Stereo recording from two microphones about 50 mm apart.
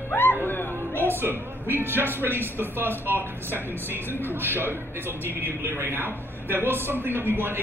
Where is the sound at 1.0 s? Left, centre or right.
Right.